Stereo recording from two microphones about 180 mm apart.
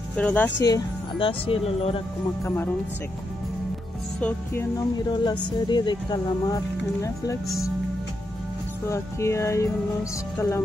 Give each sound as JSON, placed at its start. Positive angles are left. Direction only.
{"t": 0.1, "sound": "speech", "side_deg": 10}
{"t": 0.7, "sound": "speech", "side_deg": 25}
{"t": 2.4, "sound": "music", "side_deg": 10}
{"t": 4.2, "sound": "music", "side_deg": 10}
{"t": 4.7, "sound": "speech", "side_deg": 25}
{"t": 8.8, "sound": "music", "side_deg": 15}